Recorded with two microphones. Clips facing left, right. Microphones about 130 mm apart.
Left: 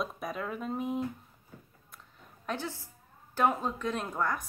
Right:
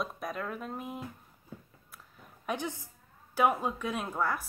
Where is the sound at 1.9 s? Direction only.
5° right (ahead or behind).